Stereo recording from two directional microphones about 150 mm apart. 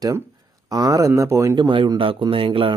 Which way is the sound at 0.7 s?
25° right (ahead or behind).